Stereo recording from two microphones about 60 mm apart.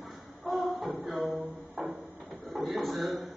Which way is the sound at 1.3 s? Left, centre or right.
Centre.